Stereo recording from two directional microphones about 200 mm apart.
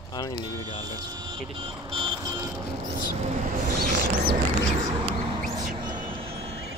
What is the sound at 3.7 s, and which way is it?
Mouse, 50° right (ahead or behind).